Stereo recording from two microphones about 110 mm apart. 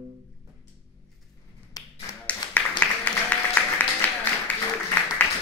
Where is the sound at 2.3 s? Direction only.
15° left (ahead or behind).